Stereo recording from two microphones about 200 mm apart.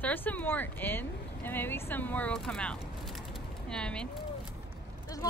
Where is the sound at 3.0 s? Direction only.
Centre (ahead or behind).